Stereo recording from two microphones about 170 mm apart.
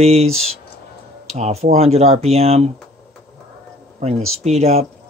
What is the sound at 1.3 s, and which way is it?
Speech, 40° right (ahead or behind).